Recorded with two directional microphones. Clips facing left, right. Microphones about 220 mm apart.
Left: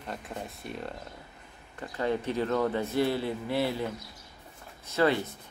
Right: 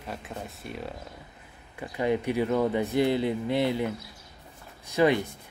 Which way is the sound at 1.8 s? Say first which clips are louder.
Right 3 dB; 15° right (ahead or behind).